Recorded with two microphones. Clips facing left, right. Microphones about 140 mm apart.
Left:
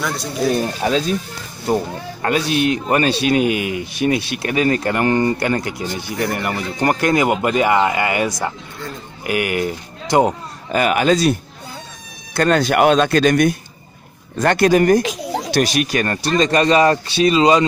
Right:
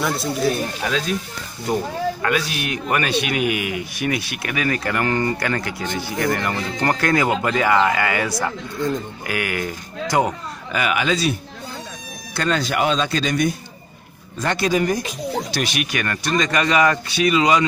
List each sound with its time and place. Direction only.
0.0 s speech: centre (ahead or behind)
0.8 s speech: 30° left (ahead or behind)
2.2 s speech: 30° left (ahead or behind)
10.7 s a man's voice: 40° left (ahead or behind)
12.4 s speech: 55° left (ahead or behind); by 15.1 s 75° left (ahead or behind)
15.5 s speech: 40° left (ahead or behind)